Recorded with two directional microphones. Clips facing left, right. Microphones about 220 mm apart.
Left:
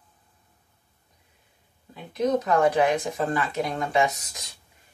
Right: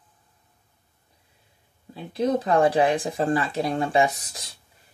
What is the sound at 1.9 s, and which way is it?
Speech, 30° right (ahead or behind).